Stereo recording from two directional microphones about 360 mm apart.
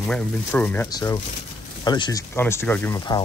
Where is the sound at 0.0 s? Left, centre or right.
Centre.